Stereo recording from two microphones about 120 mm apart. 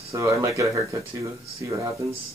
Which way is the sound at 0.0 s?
25° right (ahead or behind).